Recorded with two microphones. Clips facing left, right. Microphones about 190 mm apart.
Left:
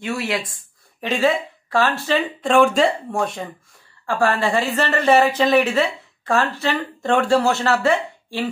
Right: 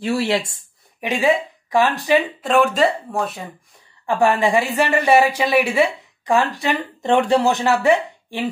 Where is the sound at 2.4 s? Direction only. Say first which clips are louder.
Left 1 dB; centre (ahead or behind).